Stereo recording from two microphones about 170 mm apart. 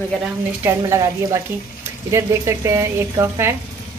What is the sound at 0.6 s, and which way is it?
Speech, 15° right (ahead or behind).